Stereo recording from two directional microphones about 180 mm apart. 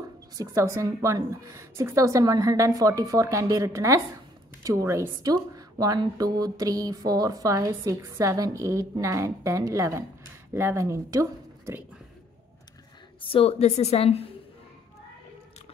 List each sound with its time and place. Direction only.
0.4 s a woman's voice: 15° right (ahead or behind)
13.2 s a woman's voice: 30° left (ahead or behind)